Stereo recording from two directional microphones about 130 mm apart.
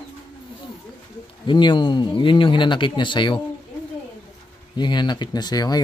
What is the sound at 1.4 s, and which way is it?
Speech, 35° left (ahead or behind).